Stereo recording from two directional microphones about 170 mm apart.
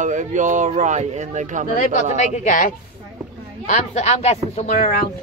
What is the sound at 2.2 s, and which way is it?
Speech, 45° left (ahead or behind).